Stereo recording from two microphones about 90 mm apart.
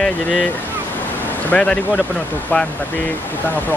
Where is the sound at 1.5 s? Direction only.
10° left (ahead or behind).